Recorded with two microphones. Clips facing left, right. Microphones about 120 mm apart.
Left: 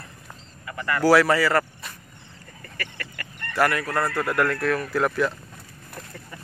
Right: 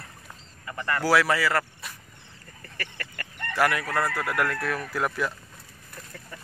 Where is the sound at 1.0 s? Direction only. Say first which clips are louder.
Left 5 dB; centre (ahead or behind).